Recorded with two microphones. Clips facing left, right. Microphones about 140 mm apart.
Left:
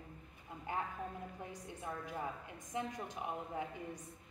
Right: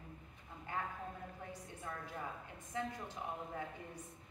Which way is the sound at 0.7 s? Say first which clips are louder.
Left 2 dB; 15° left (ahead or behind).